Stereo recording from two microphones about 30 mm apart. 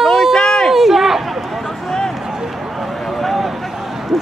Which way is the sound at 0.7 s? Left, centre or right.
Centre.